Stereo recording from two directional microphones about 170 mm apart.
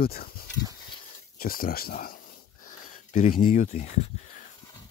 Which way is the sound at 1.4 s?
60° left (ahead or behind).